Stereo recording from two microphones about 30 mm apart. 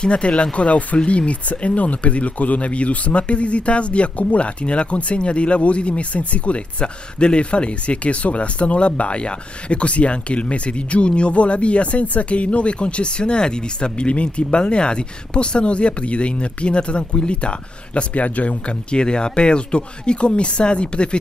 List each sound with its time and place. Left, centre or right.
0.0 s speech: left
18.1 s speech: left
18.7 s speech: left